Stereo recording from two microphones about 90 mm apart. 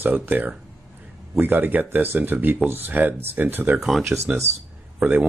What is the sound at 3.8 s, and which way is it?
Speech, centre (ahead or behind).